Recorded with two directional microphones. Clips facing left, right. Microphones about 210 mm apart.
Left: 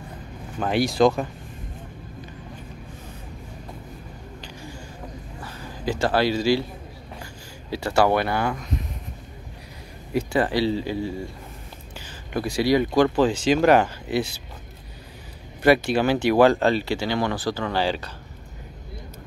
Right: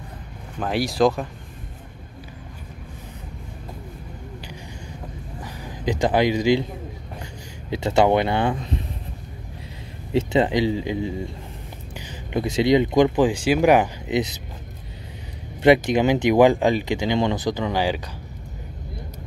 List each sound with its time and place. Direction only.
0.6 s speech: centre (ahead or behind)
5.4 s speech: 15° right (ahead or behind)
7.7 s speech: 20° right (ahead or behind)
10.1 s speech: 20° right (ahead or behind)
12.3 s speech: 20° right (ahead or behind)
15.6 s speech: 20° right (ahead or behind)